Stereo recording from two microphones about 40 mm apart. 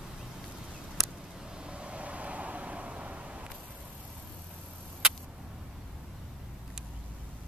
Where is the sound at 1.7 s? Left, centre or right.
Right.